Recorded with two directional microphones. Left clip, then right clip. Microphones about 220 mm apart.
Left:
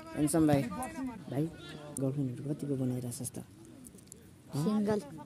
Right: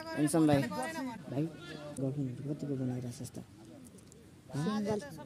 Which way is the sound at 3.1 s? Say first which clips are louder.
Left 3 dB; 10° left (ahead or behind).